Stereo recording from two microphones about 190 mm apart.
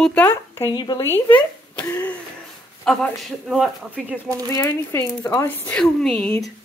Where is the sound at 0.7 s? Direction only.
25° left (ahead or behind).